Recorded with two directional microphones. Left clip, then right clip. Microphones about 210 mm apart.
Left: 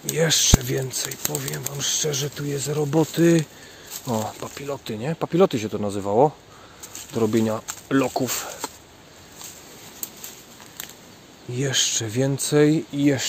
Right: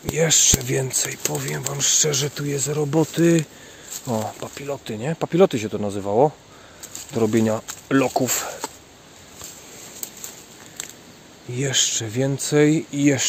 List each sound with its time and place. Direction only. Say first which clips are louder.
0.1 s speech: right 1 dB; centre (ahead or behind)
11.5 s speech: right 1 dB; centre (ahead or behind)